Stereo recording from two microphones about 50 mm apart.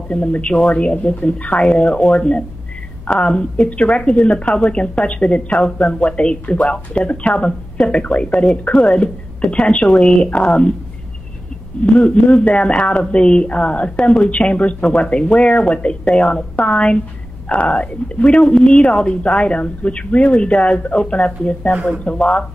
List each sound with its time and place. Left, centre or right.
0.1 s speech: left
11.8 s speech: left